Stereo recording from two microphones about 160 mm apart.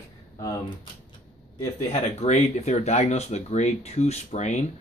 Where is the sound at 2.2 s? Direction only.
45° left (ahead or behind).